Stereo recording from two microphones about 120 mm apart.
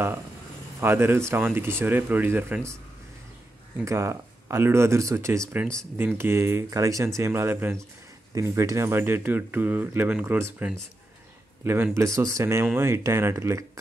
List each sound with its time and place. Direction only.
0.7 s speech: 20° right (ahead or behind)
3.8 s speech: 25° right (ahead or behind)